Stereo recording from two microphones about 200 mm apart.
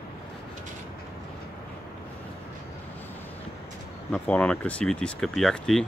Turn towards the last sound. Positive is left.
turn(degrees=0)  # may be behind; listen again after turning